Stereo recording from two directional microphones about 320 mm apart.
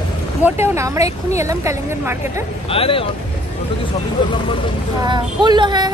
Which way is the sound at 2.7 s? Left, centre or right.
Centre.